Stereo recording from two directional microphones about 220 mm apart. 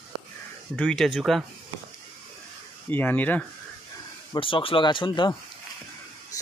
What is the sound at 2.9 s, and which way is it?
Speech, 10° left (ahead or behind).